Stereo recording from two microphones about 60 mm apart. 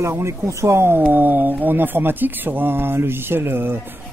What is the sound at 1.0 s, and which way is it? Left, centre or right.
Speech, right.